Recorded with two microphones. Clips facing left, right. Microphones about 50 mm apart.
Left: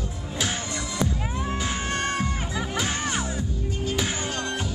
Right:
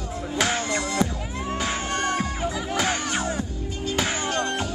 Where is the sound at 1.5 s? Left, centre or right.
Right.